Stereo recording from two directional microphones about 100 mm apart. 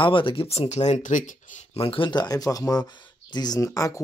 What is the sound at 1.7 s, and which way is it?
Speech, 65° left (ahead or behind).